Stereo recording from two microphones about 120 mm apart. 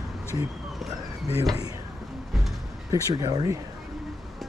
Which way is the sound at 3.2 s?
35° right (ahead or behind).